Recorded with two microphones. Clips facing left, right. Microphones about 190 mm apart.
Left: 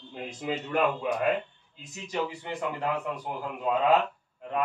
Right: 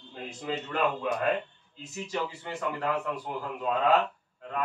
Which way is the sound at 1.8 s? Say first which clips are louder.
Left 1 dB; 15° left (ahead or behind).